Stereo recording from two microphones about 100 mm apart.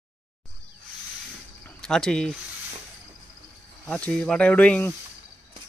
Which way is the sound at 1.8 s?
5° left (ahead or behind).